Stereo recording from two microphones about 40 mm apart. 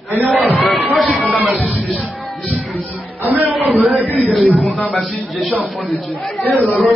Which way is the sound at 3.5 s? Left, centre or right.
Centre.